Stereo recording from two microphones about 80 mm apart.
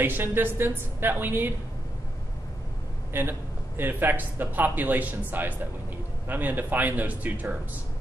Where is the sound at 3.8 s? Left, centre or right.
Right.